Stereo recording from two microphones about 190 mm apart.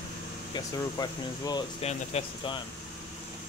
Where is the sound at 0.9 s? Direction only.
20° left (ahead or behind).